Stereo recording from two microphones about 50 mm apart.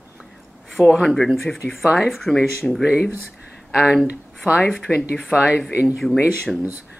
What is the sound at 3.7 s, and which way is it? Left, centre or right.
Speech, centre.